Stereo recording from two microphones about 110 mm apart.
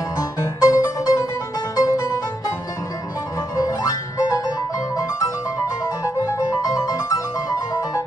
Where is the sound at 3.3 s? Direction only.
30° left (ahead or behind).